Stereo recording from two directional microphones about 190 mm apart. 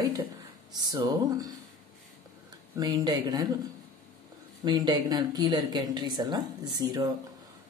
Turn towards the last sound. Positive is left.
turn(degrees=-20)  # may be behind; listen again after turning